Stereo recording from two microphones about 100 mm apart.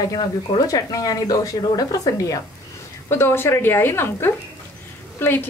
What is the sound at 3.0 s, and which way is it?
A woman's voice, 25° left (ahead or behind).